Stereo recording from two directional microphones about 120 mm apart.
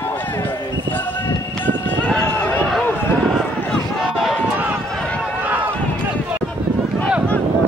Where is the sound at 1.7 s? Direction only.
15° left (ahead or behind).